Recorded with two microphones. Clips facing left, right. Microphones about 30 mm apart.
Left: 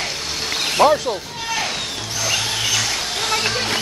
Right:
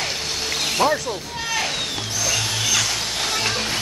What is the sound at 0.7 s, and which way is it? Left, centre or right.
Speech, left.